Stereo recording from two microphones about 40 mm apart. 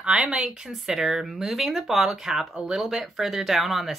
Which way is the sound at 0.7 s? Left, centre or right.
Centre.